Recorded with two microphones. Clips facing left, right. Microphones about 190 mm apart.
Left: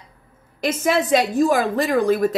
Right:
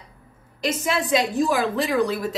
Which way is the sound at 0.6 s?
50° left (ahead or behind).